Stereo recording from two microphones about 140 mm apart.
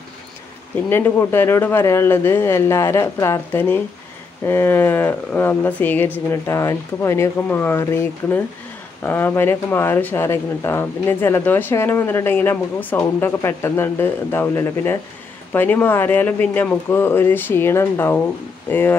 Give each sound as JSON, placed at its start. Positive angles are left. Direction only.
{"t": 0.8, "sound": "speech", "side_deg": 15}